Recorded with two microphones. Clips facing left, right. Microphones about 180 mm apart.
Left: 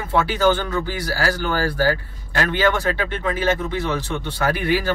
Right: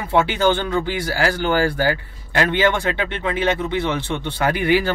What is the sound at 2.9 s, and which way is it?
Speech, 40° left (ahead or behind).